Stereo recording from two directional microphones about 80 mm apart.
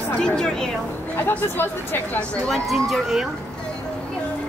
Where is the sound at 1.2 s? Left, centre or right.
Left.